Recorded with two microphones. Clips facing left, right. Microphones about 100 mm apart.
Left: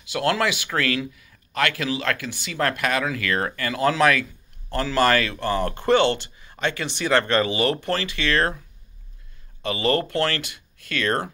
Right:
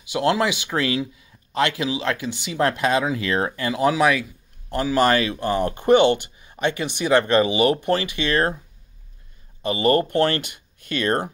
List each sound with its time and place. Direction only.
0.0 s speech: 20° right (ahead or behind)
9.7 s speech: 20° right (ahead or behind)